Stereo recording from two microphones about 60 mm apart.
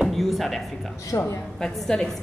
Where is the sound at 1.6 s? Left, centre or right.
Centre.